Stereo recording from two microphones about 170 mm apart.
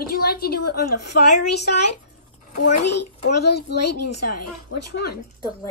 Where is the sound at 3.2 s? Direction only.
75° left (ahead or behind).